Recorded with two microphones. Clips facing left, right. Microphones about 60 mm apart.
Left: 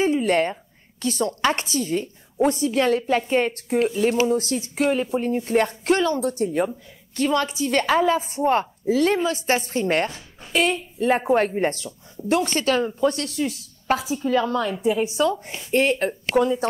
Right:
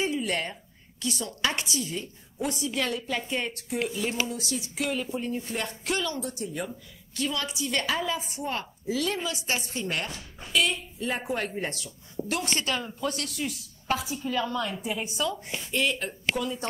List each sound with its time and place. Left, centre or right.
0.0 s a woman's voice: left
13.9 s a woman's voice: centre
15.4 s a woman's voice: left